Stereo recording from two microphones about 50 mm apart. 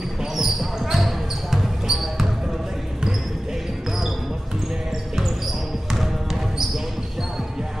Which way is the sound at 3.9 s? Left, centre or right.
Centre.